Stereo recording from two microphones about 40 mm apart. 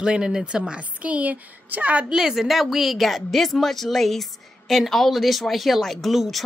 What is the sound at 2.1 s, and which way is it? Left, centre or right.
Speech, centre.